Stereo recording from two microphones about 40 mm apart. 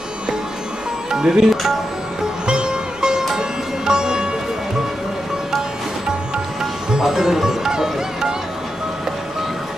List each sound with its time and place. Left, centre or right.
1.1 s speech: centre
2.4 s music: right
3.3 s sitar: centre
7.0 s music: centre